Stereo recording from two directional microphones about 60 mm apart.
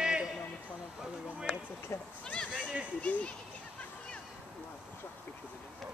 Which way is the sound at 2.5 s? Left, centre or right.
Right.